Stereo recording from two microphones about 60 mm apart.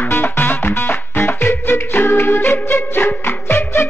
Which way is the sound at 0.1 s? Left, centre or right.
Left.